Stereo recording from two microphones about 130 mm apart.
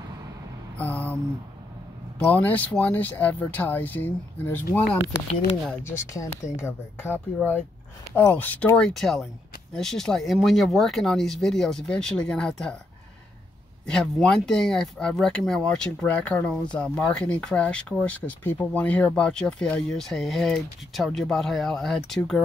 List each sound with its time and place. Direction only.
0.7 s a sound: 10° left (ahead or behind)
2.2 s speech: 10° left (ahead or behind)
5.9 s speech: 25° left (ahead or behind); by 12.7 s 5° left (ahead or behind)
13.8 s speech: 5° left (ahead or behind)